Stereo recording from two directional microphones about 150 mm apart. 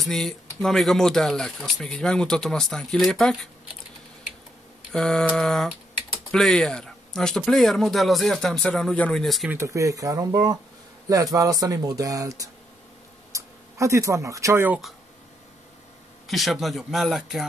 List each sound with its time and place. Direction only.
0.0 s speech: centre (ahead or behind)
4.9 s speech: 5° left (ahead or behind)
9.5 s speech: 20° right (ahead or behind)
16.3 s speech: centre (ahead or behind)